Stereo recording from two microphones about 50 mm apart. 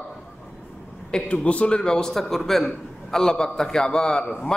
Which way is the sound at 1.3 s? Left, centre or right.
Left.